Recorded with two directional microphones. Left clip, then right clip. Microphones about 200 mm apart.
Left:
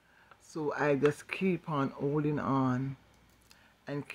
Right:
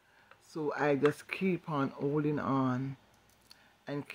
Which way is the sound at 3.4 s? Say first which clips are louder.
Even; 10° left (ahead or behind).